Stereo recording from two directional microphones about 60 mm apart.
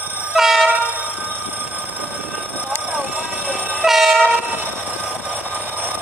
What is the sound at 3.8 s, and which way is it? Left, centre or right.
Train, centre.